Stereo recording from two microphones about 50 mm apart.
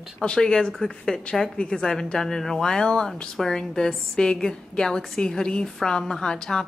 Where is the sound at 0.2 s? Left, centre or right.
Centre.